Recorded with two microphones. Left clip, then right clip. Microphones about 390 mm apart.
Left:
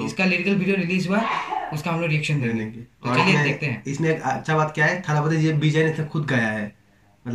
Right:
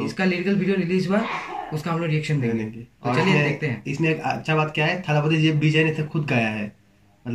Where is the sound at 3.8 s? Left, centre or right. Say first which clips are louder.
Left 1 dB; centre.